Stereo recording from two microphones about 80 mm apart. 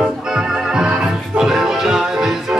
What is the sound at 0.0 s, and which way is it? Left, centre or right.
Music, centre.